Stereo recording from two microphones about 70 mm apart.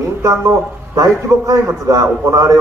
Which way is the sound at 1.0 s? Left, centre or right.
Right.